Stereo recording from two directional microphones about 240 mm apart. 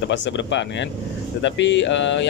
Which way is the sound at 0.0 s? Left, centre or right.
Left.